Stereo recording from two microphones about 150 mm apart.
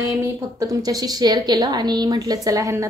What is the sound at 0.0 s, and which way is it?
A woman's voice, 20° right (ahead or behind).